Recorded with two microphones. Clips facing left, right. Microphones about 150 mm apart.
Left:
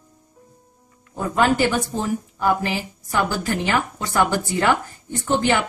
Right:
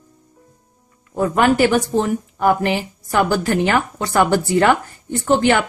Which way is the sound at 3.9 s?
65° right (ahead or behind).